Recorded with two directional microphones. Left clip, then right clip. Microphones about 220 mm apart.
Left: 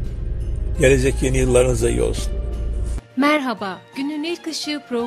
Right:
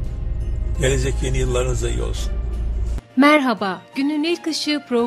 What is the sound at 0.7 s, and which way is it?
Speech, 25° left (ahead or behind).